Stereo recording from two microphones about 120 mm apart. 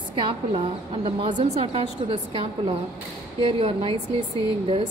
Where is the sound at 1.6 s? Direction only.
55° right (ahead or behind).